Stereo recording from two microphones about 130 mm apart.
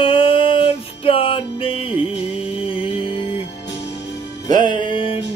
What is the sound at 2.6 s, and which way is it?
Mantra, 45° left (ahead or behind).